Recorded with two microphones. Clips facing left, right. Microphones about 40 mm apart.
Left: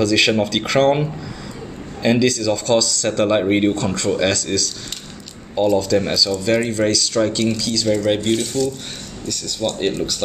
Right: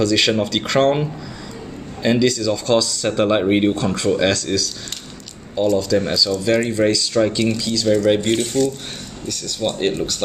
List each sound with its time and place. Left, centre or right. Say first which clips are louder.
0.0 s speech: left 1 dB; centre
2.0 s speech: even; centre
5.8 s speech: even; centre
6.7 s speech: right 1 dB; centre
8.4 s speech: right 2 dB; right
9.3 s speech: even; centre